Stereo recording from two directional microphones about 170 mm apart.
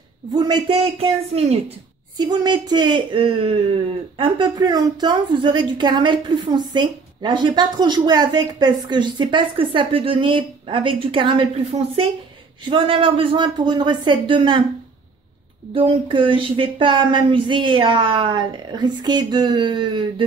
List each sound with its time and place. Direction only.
0.4 s a woman's voice: 25° right (ahead or behind)
0.9 s speech: 35° right (ahead or behind)
2.1 s a woman's voice: 25° right (ahead or behind)
15.7 s a woman's voice: 30° right (ahead or behind)